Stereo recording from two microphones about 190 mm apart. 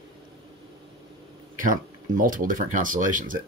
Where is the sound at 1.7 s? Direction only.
45° right (ahead or behind).